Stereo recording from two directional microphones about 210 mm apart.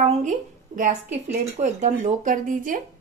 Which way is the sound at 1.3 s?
35° right (ahead or behind).